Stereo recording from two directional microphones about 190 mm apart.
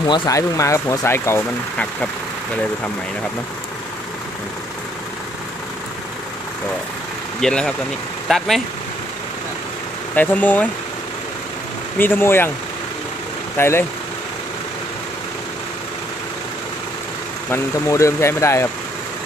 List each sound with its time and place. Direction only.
0.0 s speech: 25° left (ahead or behind)
7.3 s speech: 5° left (ahead or behind)
10.1 s speech: 10° left (ahead or behind)
12.0 s speech: 10° left (ahead or behind)
13.6 s speech: 10° left (ahead or behind)
17.5 s speech: 15° left (ahead or behind)